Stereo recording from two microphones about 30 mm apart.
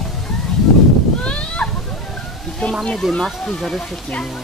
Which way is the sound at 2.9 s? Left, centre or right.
Centre.